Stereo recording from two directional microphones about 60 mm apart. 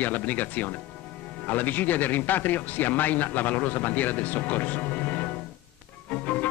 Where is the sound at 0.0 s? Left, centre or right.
Left.